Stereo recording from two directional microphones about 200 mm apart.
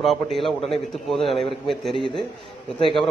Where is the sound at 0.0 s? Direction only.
Centre (ahead or behind).